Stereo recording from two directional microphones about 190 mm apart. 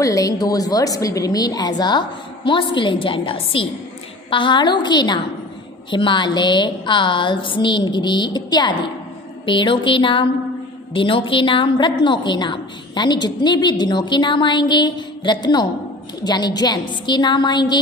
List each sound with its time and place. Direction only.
0.0 s a woman's voice: 15° left (ahead or behind)